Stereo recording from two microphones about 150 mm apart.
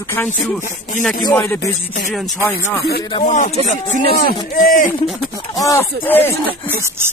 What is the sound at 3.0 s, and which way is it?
Speech, 30° left (ahead or behind).